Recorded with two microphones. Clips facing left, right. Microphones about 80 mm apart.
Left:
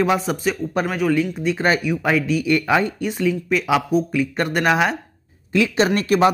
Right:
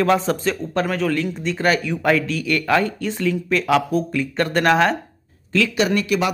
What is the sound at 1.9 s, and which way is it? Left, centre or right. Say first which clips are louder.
Speech: even; centre.